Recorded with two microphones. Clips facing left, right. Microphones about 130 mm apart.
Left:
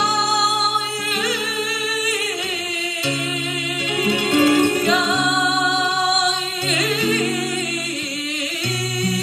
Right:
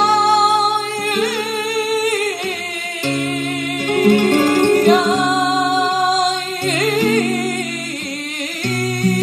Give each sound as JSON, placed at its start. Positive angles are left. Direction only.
{"t": 3.9, "sound": "music", "side_deg": -45}